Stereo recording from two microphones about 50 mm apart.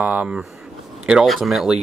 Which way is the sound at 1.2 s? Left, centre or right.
Centre.